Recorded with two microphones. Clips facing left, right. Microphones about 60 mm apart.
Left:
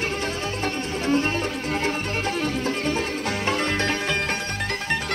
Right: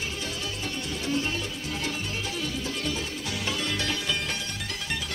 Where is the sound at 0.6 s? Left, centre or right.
Left.